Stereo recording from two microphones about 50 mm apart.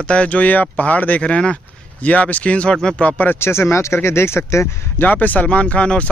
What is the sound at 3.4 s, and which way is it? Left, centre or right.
Speech, left.